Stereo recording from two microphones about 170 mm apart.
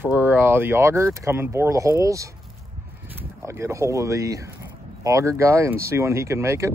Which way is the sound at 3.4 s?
15° right (ahead or behind).